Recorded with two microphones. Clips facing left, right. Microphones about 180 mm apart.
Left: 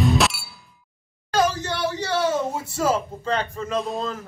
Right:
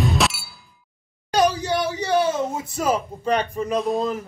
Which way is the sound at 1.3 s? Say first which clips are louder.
Right 3 dB; 15° right (ahead or behind).